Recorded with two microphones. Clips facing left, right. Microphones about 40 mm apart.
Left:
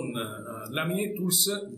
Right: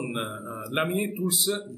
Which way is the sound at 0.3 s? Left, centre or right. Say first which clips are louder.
Right 2 dB; right.